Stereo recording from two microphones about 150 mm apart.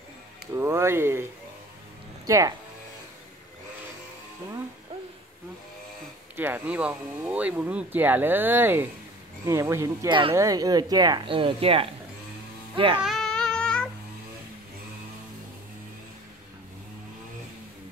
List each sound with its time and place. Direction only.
0.6 s speech: 15° right (ahead or behind)
2.2 s speech: 20° right (ahead or behind)
6.3 s speech: 15° right (ahead or behind)
10.0 s speech: 35° right (ahead or behind)
10.3 s speech: 20° right (ahead or behind)
13.0 s child singing: centre (ahead or behind)